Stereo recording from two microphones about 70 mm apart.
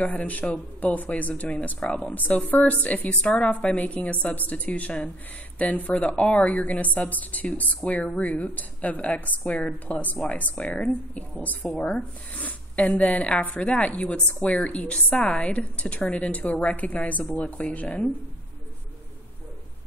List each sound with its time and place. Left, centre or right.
0.0 s speech: left